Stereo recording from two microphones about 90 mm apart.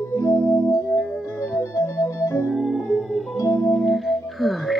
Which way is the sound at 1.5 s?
35° left (ahead or behind).